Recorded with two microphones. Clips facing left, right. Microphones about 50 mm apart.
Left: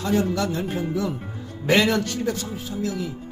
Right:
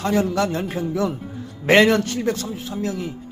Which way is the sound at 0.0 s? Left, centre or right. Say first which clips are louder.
Right 2 dB; right.